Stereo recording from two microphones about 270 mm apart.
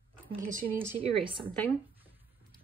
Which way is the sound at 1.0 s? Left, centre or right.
Centre.